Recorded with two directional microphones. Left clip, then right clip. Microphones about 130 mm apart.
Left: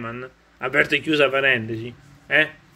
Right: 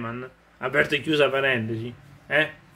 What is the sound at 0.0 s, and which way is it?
A man's voice, 25° right (ahead or behind).